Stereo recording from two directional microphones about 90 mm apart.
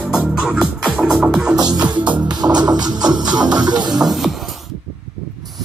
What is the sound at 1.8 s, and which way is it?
Music, 55° right (ahead or behind).